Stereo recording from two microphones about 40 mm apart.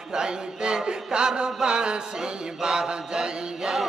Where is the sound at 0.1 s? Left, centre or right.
Right.